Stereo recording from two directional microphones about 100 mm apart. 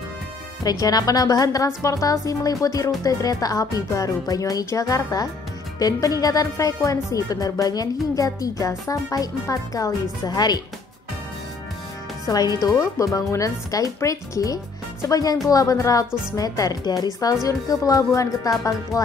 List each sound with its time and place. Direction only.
0.7 s speech: 40° left (ahead or behind)
12.3 s speech: 40° left (ahead or behind)